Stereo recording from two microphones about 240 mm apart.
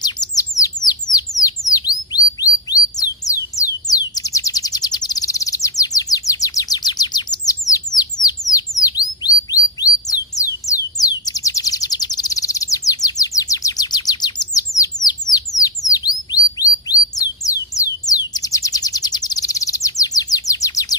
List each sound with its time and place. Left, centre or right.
0.0 s bird: centre